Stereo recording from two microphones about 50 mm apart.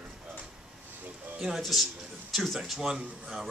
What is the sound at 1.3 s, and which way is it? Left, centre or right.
Speech, centre.